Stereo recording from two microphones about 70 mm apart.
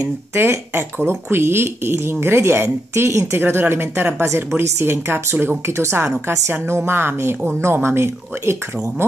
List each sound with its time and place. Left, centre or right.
0.3 s speech: right